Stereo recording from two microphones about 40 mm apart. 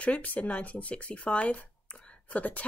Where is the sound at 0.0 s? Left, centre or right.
Left.